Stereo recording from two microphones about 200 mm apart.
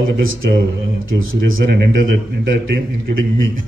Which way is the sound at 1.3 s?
80° right.